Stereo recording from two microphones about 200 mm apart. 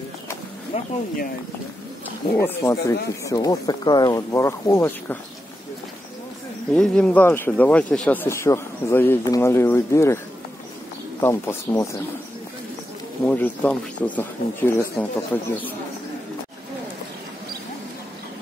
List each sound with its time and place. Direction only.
0.7 s speech: 35° left (ahead or behind)
2.4 s speech: 15° left (ahead or behind)
6.7 s speech: 5° left (ahead or behind)
13.3 s speech: 10° left (ahead or behind)